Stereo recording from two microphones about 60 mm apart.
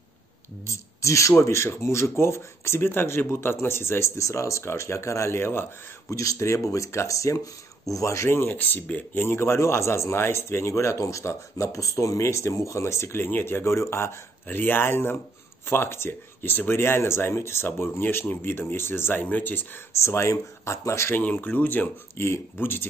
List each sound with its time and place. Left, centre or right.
0.7 s speech: left
6.0 s speech: left
8.3 s speech: left
8.5 s speech: left
14.5 s speech: left
19.9 s speech: left
21.1 s speech: left
22.1 s speech: left